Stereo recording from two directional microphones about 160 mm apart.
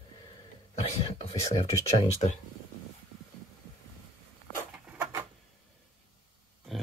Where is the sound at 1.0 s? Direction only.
40° left (ahead or behind).